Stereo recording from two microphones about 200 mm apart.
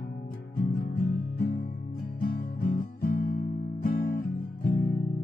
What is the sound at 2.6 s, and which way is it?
Guitar, 45° left (ahead or behind).